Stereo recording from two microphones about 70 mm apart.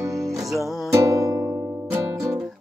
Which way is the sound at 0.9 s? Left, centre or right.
Right.